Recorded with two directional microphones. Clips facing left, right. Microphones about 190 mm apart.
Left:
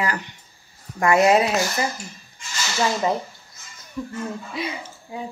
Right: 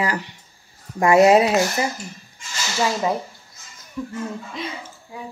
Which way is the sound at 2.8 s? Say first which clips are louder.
Even; 5° right (ahead or behind).